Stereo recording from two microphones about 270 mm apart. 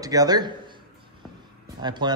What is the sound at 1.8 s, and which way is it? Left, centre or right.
Speech, centre.